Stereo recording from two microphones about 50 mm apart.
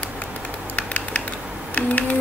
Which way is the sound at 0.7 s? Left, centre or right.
Left.